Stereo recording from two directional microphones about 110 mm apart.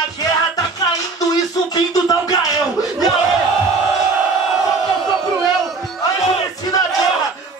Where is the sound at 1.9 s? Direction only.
35° left (ahead or behind).